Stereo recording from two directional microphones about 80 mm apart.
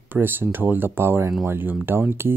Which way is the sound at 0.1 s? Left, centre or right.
Right.